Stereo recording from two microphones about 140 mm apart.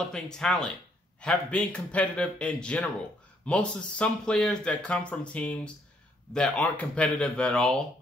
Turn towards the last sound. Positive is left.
turn(degrees=5)  # may be behind; listen again after turning